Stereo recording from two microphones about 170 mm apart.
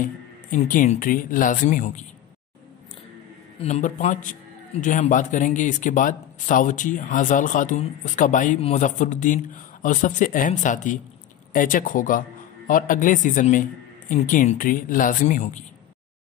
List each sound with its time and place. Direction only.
0.0 s speech: 50° left (ahead or behind)
3.5 s speech: 40° left (ahead or behind)